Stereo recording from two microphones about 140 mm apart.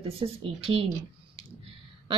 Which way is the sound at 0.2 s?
40° right (ahead or behind).